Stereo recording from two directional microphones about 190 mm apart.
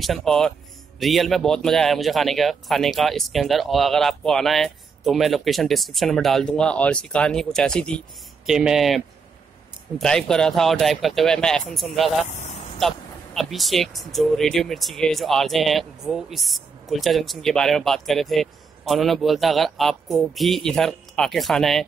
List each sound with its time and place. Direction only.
0.0 s speech: centre (ahead or behind)
12.2 s speech: 35° left (ahead or behind)
12.7 s speech: centre (ahead or behind)